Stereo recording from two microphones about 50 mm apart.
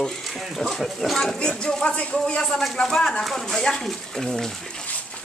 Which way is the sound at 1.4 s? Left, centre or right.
Centre.